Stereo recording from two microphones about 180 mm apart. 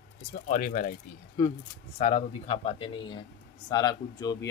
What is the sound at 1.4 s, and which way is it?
Speech, 15° left (ahead or behind).